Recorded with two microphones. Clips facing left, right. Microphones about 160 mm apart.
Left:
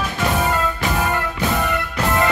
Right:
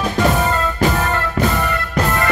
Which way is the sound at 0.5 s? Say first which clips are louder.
Right 3 dB; 15° left (ahead or behind).